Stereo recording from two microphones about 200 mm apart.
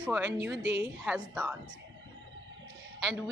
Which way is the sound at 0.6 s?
55° right (ahead or behind).